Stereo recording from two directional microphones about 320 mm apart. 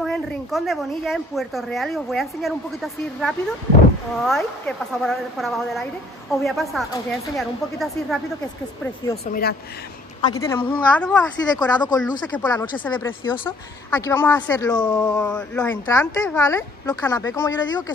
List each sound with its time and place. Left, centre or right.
0.0 s speech: centre
9.3 s speech: left
10.2 s speech: centre